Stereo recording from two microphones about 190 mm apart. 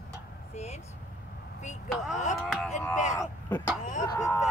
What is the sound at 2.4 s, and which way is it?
Speech, centre (ahead or behind).